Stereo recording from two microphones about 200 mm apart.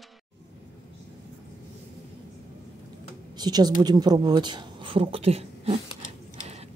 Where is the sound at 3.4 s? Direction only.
20° right (ahead or behind).